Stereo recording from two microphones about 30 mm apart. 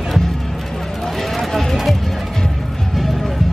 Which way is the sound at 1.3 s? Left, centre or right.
Centre.